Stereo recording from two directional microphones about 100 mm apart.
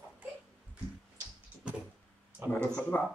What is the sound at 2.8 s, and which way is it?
Speech, 15° left (ahead or behind).